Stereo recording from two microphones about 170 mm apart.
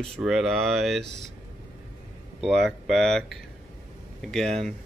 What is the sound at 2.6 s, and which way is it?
Speech, 5° left (ahead or behind).